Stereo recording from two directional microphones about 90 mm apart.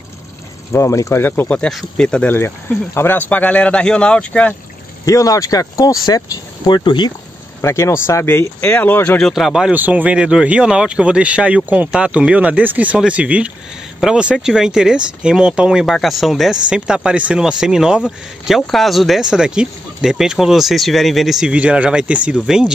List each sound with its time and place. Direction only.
0.7 s speech: 35° left (ahead or behind)
2.0 s speech: 10° left (ahead or behind)
2.3 s speech: 25° left (ahead or behind)
5.0 s speech: 40° left (ahead or behind); by 7.2 s 55° left (ahead or behind)
7.6 s speech: 30° left (ahead or behind)
9.2 s speech: 5° right (ahead or behind)
9.8 s speech: 20° right (ahead or behind)